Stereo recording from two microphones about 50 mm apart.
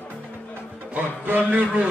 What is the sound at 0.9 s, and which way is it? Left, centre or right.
Speech, right.